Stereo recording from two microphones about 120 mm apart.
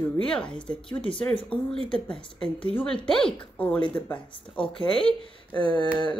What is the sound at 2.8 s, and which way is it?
A woman's voice, 5° left (ahead or behind).